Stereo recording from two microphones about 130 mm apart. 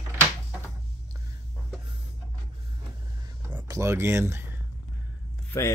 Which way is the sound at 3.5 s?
25° right (ahead or behind).